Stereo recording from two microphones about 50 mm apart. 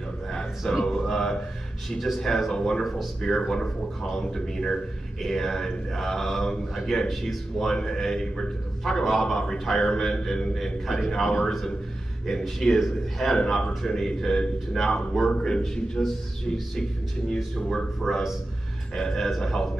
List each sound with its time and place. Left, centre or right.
0.3 s a sound: centre
1.9 s a man's voice: centre
13.4 s speech: centre
18.0 s a man's voice: centre